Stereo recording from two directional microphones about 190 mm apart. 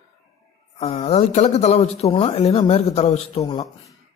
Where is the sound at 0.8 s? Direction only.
35° left (ahead or behind).